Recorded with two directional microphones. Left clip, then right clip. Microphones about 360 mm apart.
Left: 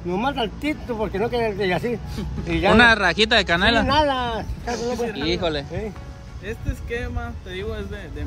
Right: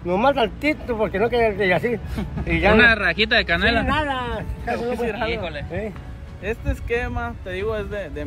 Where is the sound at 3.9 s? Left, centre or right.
Left.